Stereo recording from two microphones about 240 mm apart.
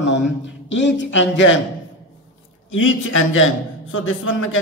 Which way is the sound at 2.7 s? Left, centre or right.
Left.